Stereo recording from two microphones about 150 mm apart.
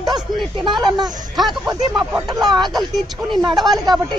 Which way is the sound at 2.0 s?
5° right (ahead or behind).